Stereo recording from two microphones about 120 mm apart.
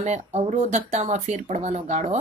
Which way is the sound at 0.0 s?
75° right (ahead or behind).